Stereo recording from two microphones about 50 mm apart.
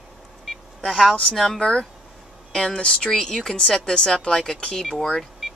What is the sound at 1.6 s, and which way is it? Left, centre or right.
Speech, centre.